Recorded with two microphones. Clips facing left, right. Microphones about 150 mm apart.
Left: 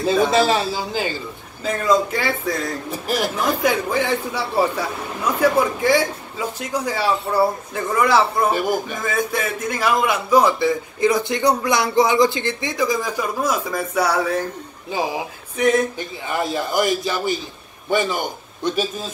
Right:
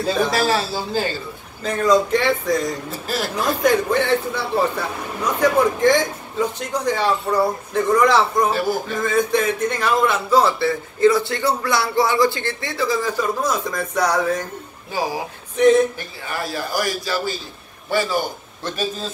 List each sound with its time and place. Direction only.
0.3 s a man's voice: 20° left (ahead or behind)
1.6 s speech: 5° left (ahead or behind)
2.9 s a man's voice: 15° left (ahead or behind)
15.5 s speech: 5° left (ahead or behind)
16.0 s a man's voice: 20° left (ahead or behind)